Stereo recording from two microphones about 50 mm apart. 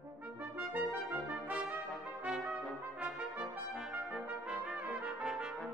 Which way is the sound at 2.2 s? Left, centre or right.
Centre.